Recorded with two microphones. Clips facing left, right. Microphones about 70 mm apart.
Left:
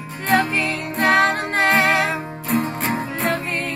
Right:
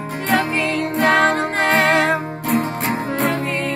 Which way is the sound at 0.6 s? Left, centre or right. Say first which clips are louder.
Right 3 dB; right.